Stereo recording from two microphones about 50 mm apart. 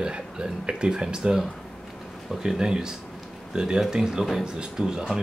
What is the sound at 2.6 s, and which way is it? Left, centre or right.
Speech, centre.